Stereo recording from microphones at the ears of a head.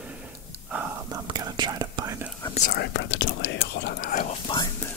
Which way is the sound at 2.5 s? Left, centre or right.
Left.